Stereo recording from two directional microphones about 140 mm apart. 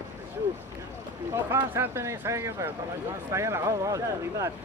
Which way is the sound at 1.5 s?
20° right (ahead or behind).